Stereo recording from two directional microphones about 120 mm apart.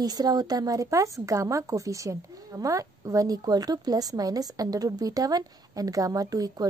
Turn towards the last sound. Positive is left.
turn(degrees=-30)  # may be behind; listen again after turning